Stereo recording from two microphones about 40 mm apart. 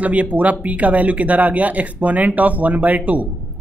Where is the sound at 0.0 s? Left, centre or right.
Right.